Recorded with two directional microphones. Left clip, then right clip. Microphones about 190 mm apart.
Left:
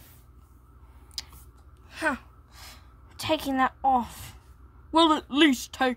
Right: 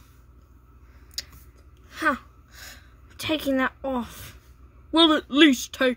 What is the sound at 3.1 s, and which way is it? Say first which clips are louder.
A woman's voice: right 2 dB; 20° left (ahead or behind).